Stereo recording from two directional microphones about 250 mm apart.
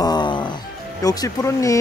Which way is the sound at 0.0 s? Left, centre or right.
Centre.